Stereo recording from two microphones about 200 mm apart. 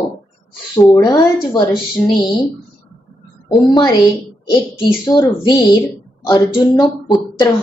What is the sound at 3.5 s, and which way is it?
A woman's voice, 20° left (ahead or behind).